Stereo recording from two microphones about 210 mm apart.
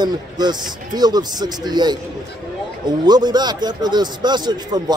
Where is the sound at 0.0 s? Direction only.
20° right (ahead or behind).